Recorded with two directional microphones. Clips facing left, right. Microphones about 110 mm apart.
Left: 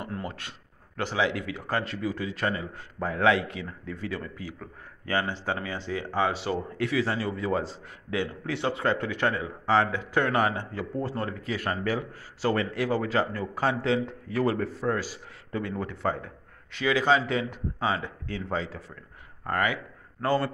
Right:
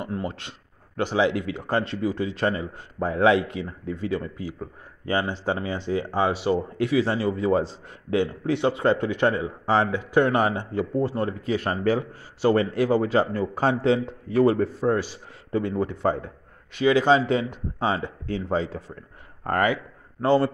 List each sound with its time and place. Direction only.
0.0 s speech: 20° right (ahead or behind)
19.4 s speech: 40° right (ahead or behind)
19.7 s a man's voice: 25° right (ahead or behind)